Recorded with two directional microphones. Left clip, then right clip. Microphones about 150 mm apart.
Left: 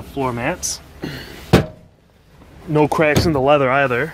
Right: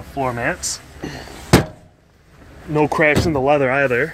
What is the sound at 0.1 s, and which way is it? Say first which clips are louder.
Speech: right 1 dB; 20° left (ahead or behind).